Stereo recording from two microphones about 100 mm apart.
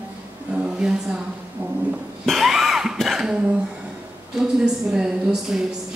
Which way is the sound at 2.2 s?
Centre (ahead or behind).